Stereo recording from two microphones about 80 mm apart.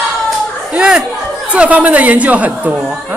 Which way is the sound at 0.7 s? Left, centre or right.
Centre.